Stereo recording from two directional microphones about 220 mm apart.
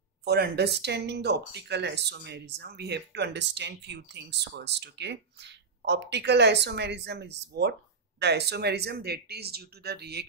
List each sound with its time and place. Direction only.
0.2 s speech: 45° right (ahead or behind)